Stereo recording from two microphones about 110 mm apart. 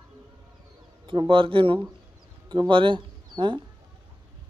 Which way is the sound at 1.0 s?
50° right (ahead or behind).